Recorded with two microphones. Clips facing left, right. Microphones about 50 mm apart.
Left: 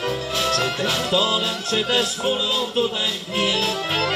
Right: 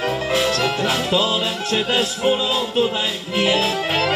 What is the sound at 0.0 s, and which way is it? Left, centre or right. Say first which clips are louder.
Music: right 4 dB; right.